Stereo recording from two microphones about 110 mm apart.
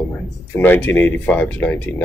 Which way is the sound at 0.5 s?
15° left (ahead or behind).